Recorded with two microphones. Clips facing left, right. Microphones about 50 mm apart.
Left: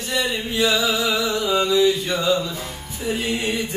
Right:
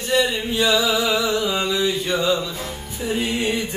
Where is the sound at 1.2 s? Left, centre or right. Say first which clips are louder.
Left 1 dB; centre.